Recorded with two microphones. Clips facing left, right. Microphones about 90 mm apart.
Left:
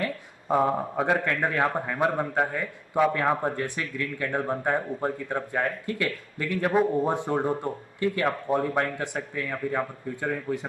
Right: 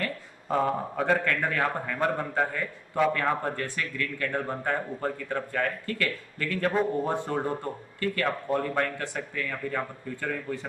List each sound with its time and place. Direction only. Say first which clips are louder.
0.0 s a man's voice: left 3 dB; 15° left (ahead or behind)